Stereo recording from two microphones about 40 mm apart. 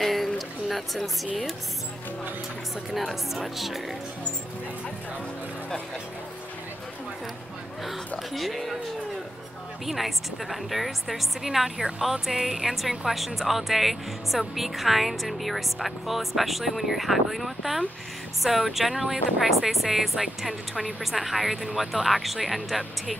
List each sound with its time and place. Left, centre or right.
0.0 s a sound: centre
0.7 s a woman's voice: centre
2.9 s a woman's voice: centre
8.3 s a woman's voice: centre
9.8 s a woman's voice: centre